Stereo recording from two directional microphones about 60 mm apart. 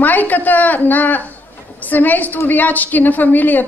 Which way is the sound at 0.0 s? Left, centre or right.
Left.